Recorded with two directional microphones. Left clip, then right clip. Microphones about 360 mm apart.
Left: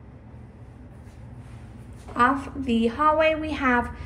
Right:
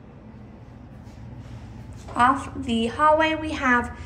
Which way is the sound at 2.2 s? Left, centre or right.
Centre.